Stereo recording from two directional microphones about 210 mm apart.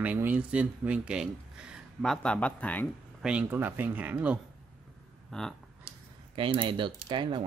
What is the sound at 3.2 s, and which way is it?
Speech, 5° right (ahead or behind).